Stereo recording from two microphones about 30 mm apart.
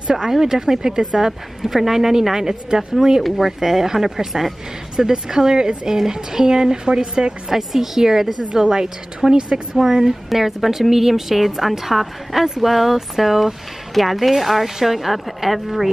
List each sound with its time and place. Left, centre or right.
0.1 s a woman's voice: centre
3.3 s a woman's voice: centre; by 7.3 s right
7.5 s a woman's voice: centre
10.3 s speech: centre